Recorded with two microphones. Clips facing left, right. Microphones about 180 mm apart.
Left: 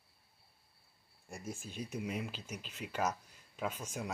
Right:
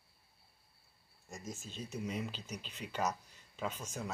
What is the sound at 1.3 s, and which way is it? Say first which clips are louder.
Speech: left 2 dB; 10° left (ahead or behind).